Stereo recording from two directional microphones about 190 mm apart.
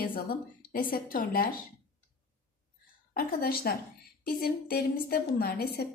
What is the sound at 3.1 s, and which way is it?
A woman's voice, 50° left (ahead or behind).